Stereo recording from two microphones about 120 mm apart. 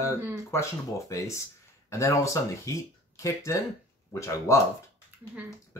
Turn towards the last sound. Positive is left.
turn(degrees=25)  # may be behind; listen again after turning